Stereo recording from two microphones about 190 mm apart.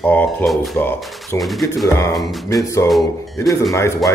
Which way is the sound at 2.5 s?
15° left (ahead or behind).